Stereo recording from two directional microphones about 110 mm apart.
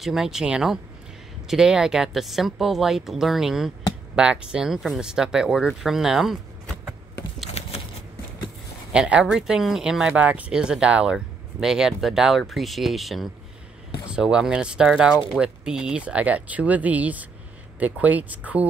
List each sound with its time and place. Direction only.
0.0 s speech: 5° right (ahead or behind)
8.9 s speech: 10° right (ahead or behind)